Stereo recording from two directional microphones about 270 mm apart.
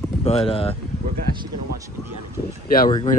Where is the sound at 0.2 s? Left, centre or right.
Left.